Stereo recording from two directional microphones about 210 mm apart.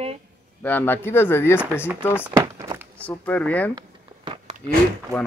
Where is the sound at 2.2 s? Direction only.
15° right (ahead or behind).